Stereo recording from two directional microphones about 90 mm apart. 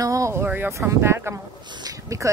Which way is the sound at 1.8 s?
40° right (ahead or behind).